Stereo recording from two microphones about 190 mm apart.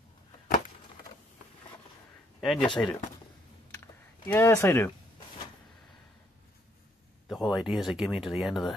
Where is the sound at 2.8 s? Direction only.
10° left (ahead or behind).